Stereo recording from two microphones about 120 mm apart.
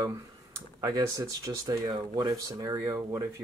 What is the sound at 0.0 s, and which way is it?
Speech, 30° right (ahead or behind).